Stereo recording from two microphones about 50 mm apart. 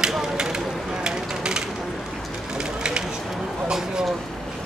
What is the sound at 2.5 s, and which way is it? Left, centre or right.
Fire, centre.